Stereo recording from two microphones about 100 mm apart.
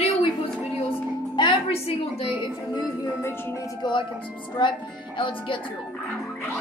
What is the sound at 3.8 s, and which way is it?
A woman's voice, 45° left (ahead or behind).